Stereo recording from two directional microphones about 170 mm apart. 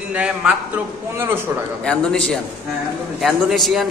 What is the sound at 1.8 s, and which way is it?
A man's voice, 5° left (ahead or behind).